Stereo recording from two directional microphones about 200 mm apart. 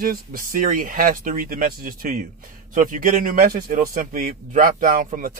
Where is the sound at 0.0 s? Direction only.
45° right (ahead or behind).